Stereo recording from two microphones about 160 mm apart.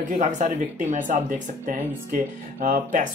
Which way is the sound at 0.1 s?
55° right (ahead or behind).